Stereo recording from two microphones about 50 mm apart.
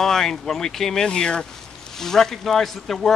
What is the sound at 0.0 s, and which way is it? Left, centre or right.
Speech, centre.